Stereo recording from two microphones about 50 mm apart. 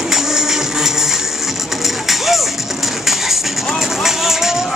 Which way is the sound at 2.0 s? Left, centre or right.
Centre.